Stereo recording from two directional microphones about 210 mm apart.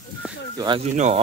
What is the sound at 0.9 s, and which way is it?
Speech, 35° right (ahead or behind).